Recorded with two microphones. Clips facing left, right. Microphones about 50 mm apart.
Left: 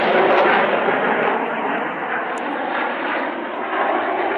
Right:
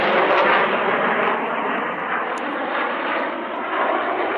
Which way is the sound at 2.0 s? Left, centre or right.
Centre.